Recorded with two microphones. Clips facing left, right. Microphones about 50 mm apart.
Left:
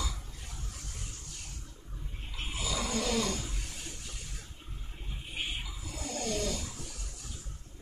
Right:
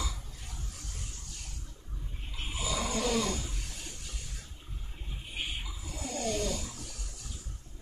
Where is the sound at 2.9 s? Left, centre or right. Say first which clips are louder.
Right 1 dB; right.